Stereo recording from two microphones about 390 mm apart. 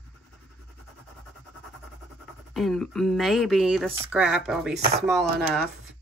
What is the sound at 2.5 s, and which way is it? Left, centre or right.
Speech, centre.